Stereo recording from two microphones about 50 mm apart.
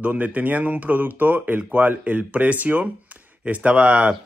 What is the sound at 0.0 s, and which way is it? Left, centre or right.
Speech, right.